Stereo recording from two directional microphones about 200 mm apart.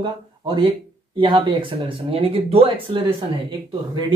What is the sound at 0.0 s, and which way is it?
Speech, 25° right (ahead or behind).